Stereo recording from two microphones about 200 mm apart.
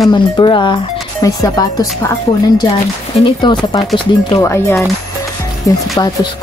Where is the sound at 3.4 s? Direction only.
20° left (ahead or behind).